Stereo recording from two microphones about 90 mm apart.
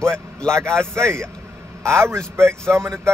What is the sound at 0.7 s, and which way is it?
Speech, 30° right (ahead or behind).